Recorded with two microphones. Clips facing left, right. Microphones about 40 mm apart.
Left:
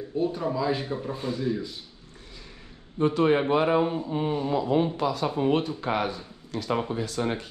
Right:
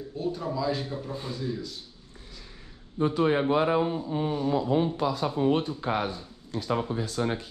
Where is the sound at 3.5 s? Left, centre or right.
Left.